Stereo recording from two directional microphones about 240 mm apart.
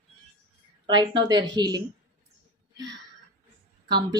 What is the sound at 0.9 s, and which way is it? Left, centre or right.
Speech, centre.